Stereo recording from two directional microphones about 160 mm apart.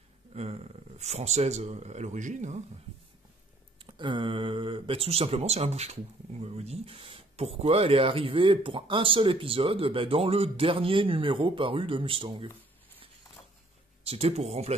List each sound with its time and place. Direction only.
0.3 s speech: 40° right (ahead or behind)
3.8 s speech: 30° right (ahead or behind)
14.0 s speech: 40° right (ahead or behind)